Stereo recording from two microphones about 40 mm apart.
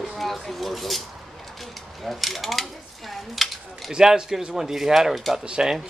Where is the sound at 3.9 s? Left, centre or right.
Centre.